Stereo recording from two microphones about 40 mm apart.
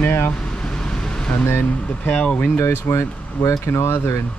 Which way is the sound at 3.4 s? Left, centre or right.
Left.